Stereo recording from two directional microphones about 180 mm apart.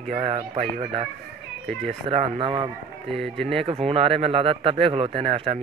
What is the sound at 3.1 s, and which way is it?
Speech, centre (ahead or behind).